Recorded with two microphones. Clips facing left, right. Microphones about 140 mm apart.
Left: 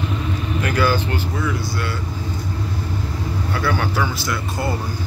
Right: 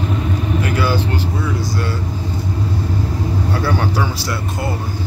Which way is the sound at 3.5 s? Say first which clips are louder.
Right 1 dB; 35° right (ahead or behind).